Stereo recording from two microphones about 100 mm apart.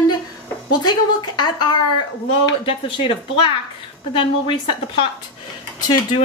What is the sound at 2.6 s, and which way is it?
A woman's voice, 60° left (ahead or behind).